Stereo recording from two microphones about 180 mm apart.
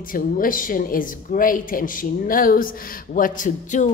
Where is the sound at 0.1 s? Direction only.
50° left (ahead or behind).